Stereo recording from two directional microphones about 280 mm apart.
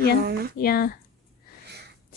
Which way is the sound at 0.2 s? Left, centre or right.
Right.